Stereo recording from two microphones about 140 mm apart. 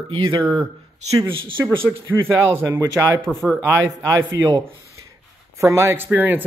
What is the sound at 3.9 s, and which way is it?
Speech, 25° right (ahead or behind).